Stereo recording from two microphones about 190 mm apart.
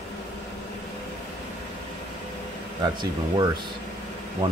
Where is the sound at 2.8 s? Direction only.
20° right (ahead or behind).